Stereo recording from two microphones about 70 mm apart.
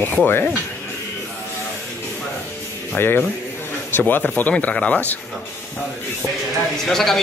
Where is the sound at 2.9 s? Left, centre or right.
Left.